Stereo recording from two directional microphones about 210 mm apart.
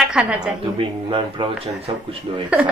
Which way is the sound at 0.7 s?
25° right (ahead or behind).